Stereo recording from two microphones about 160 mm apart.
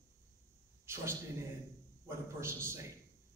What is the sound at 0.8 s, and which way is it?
A man's voice, 15° right (ahead or behind).